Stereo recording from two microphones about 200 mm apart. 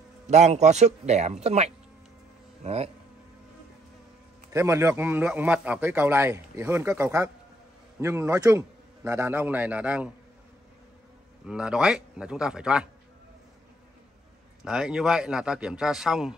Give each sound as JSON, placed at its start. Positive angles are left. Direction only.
{"t": 0.3, "sound": "speech", "side_deg": -35}
{"t": 4.5, "sound": "a man's voice", "side_deg": -15}
{"t": 11.4, "sound": "a man's voice", "side_deg": -5}
{"t": 14.6, "sound": "a man's voice", "side_deg": -5}